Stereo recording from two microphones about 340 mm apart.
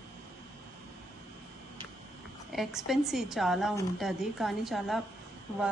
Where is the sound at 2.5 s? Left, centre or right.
Centre.